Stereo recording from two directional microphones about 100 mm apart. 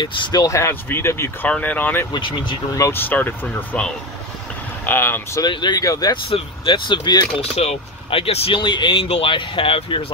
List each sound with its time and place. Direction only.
0.0 s speech: 50° left (ahead or behind)
0.4 s speech: 30° left (ahead or behind)
1.5 s speech: 15° left (ahead or behind)
2.1 s speech: 50° left (ahead or behind)
2.9 s speech: 20° left (ahead or behind)
4.8 s speech: 20° left (ahead or behind)
5.4 s speech: 50° left (ahead or behind)
6.2 s speech: 65° left (ahead or behind); by 7.2 s 50° left (ahead or behind)
7.5 s speech: 80° left
8.6 s speech: 50° left (ahead or behind)
9.0 s speech: 70° left (ahead or behind)